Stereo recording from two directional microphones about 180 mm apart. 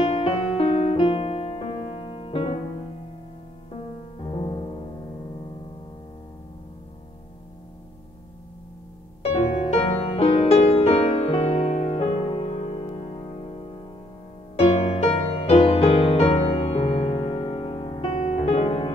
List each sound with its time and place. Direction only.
0.0 s music: 35° left (ahead or behind)
4.2 s music: 25° left (ahead or behind)
9.2 s music: 35° left (ahead or behind)
14.6 s music: 35° left (ahead or behind)